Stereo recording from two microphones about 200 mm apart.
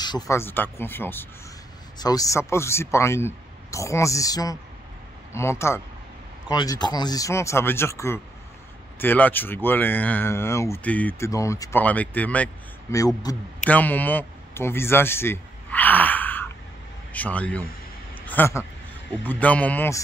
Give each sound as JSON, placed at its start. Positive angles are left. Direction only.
{"t": 0.0, "sound": "speech", "side_deg": 15}
{"t": 18.1, "sound": "a sound", "side_deg": 10}
{"t": 19.2, "sound": "speech", "side_deg": 5}